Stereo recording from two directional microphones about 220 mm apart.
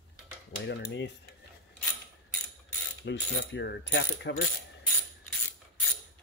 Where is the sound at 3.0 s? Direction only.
50° left (ahead or behind).